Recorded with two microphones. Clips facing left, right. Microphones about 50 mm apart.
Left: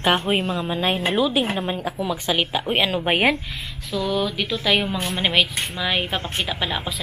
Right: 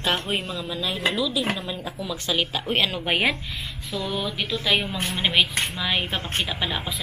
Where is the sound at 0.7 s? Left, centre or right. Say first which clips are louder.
Left 1 dB; left.